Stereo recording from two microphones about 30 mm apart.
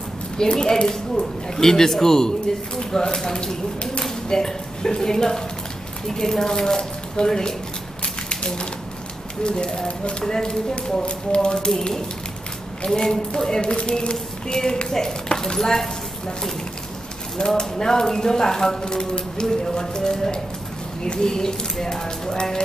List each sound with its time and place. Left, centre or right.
0.5 s speech: left
9.4 s speech: left
10.7 s speech: left
14.5 s speech: left
17.5 s speech: left